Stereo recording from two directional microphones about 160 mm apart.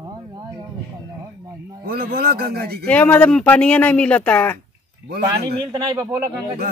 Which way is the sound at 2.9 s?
10° left (ahead or behind).